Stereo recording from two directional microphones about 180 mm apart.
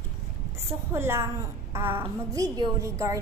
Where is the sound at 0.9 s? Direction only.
15° right (ahead or behind).